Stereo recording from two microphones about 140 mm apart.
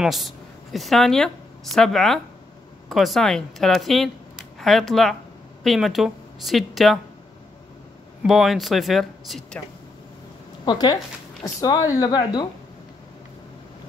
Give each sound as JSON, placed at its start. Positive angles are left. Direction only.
{"t": 0.0, "sound": "a woman's voice", "side_deg": 0}
{"t": 8.2, "sound": "speech", "side_deg": 0}
{"t": 10.6, "sound": "speech", "side_deg": 30}